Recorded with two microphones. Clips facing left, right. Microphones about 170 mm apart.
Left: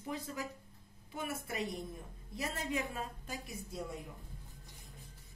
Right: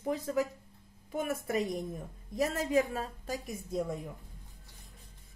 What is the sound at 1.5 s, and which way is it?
Speech, 45° right (ahead or behind).